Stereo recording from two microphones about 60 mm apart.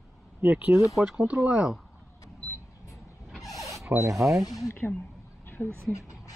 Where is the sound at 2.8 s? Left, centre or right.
Left.